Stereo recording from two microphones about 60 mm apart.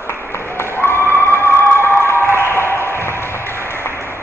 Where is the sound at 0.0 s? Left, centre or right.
Left.